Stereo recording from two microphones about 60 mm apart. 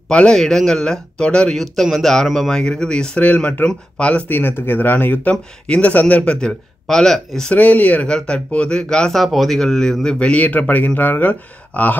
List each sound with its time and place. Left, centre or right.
0.1 s speech: centre
1.6 s speech: centre
4.3 s speech: left; by 7.5 s centre
7.5 s speech: left
9.2 s speech: centre
10.1 s speech: left